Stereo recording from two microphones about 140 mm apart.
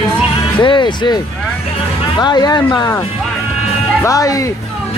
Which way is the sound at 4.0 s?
25° left (ahead or behind).